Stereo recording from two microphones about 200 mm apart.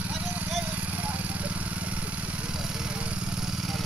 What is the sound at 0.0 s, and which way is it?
Vehicle, 10° right (ahead or behind).